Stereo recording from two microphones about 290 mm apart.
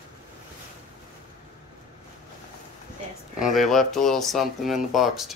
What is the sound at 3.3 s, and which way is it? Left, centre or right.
Speech, centre.